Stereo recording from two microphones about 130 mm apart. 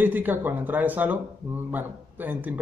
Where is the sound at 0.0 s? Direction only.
15° right (ahead or behind).